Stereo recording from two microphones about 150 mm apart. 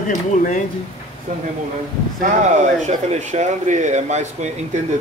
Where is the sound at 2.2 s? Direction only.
55° right (ahead or behind).